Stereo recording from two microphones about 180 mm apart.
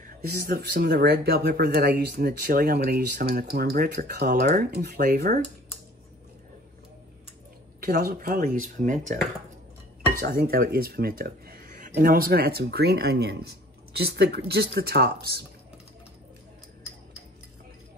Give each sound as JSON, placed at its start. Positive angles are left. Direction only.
{"t": 0.0, "sound": "speech", "side_deg": -55}
{"t": 7.8, "sound": "speech", "side_deg": -55}
{"t": 10.1, "sound": "speech", "side_deg": -55}